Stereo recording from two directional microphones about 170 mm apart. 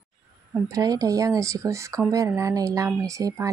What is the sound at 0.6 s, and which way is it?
Speech, 20° right (ahead or behind).